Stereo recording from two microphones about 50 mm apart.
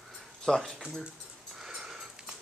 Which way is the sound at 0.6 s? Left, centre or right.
Centre.